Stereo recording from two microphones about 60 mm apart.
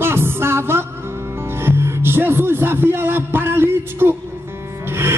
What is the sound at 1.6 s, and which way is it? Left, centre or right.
Music, right.